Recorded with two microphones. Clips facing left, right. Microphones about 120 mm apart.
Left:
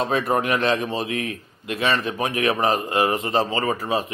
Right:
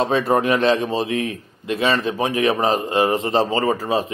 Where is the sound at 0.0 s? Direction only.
30° right (ahead or behind).